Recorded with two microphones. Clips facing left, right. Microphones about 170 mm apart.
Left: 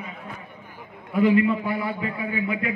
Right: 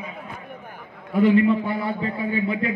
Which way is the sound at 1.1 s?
5° left (ahead or behind).